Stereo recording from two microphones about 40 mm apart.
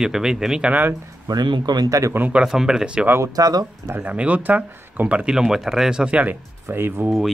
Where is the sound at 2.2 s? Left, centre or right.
Right.